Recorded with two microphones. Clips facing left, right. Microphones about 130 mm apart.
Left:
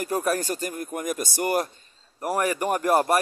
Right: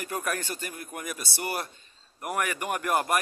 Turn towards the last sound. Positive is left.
turn(degrees=35)  # may be behind; listen again after turning